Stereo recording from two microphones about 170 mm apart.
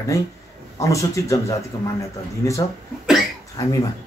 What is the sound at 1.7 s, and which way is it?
Speech, 30° left (ahead or behind).